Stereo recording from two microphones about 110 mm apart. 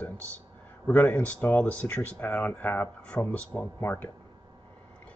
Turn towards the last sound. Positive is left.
turn(degrees=20)  # may be behind; listen again after turning